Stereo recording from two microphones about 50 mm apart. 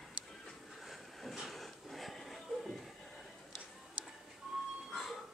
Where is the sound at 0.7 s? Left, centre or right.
Centre.